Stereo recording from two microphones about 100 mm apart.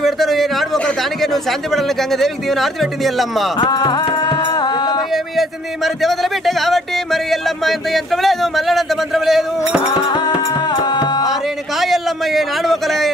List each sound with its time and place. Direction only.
0.0 s a sound: centre (ahead or behind)
0.7 s speech: 5° left (ahead or behind)
3.5 s music: 45° left (ahead or behind)
6.0 s speech: centre (ahead or behind)
10.7 s music: 45° left (ahead or behind)
11.8 s a man's voice: centre (ahead or behind)